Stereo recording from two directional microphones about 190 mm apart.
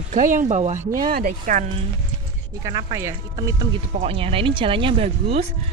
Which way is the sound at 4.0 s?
30° right (ahead or behind).